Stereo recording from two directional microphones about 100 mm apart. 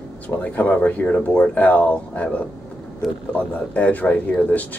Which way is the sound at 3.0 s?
Centre (ahead or behind).